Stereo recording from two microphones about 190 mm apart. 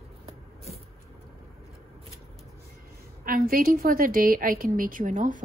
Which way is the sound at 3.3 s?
50° right (ahead or behind).